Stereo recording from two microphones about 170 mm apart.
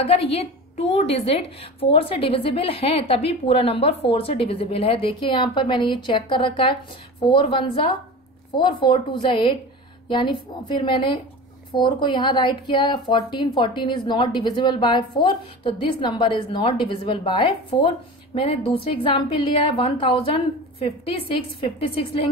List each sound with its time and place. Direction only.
0.0 s a woman's voice: 35° left (ahead or behind)